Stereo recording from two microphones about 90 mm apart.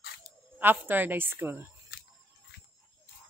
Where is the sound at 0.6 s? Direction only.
20° right (ahead or behind).